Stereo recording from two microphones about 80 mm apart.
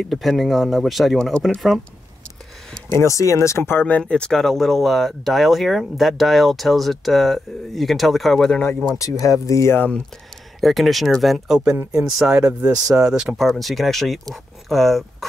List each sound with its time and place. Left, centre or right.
0.0 s speech: centre
3.0 s speech: left
4.0 s speech: centre
8.9 s speech: left
10.6 s speech: centre